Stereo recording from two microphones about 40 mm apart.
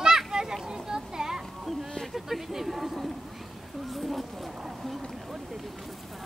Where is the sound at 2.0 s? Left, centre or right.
Centre.